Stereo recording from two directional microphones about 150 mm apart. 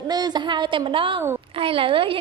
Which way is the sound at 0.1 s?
30° right (ahead or behind).